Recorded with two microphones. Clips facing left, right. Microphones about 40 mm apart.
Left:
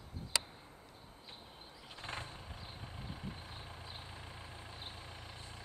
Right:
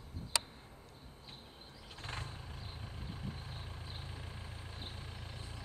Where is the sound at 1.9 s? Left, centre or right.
Centre.